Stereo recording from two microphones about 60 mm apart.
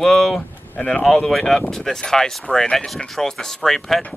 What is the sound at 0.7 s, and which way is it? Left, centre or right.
Speech, centre.